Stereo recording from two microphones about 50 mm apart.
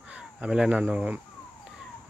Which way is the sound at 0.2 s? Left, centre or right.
Centre.